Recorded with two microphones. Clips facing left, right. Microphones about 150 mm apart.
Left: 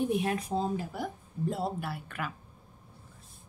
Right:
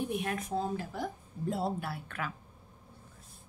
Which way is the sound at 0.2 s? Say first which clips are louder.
Left 3 dB; 30° left (ahead or behind).